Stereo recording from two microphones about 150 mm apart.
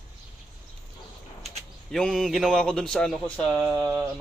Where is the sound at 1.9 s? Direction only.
5° left (ahead or behind).